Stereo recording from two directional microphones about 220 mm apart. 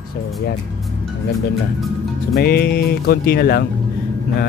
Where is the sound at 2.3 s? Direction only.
45° left (ahead or behind).